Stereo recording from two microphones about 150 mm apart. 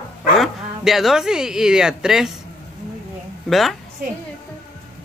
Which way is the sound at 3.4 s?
Centre (ahead or behind).